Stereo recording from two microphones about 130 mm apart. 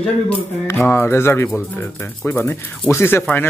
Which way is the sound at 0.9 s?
20° left (ahead or behind).